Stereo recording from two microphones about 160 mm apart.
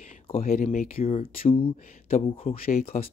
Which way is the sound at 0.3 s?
35° left (ahead or behind).